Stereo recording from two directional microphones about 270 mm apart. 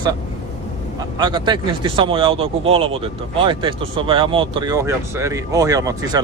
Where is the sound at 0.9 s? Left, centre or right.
Centre.